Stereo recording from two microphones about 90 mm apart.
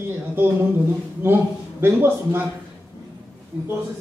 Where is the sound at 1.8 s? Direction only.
25° right (ahead or behind).